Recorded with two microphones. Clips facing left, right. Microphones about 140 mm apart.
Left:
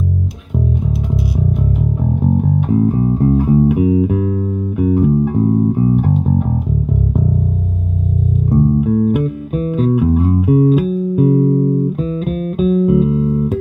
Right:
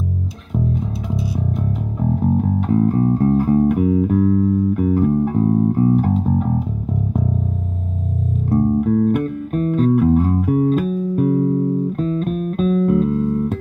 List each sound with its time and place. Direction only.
2.2 s music: 5° left (ahead or behind)
8.5 s music: 5° left (ahead or behind)